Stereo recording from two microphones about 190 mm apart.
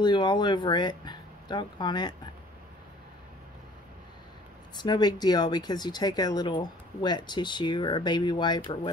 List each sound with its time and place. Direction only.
0.0 s speech: 25° left (ahead or behind)
4.8 s speech: 20° left (ahead or behind)